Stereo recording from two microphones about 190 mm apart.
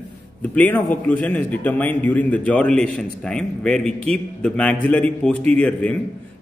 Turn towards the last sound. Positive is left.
turn(degrees=5)  # may be behind; listen again after turning